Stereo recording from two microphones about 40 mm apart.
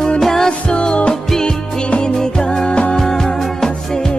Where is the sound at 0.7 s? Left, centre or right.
Left.